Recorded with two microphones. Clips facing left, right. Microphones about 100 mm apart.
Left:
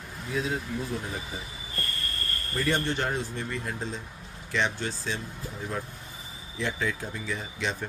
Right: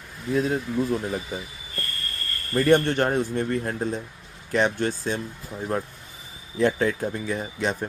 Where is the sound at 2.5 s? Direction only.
55° right (ahead or behind).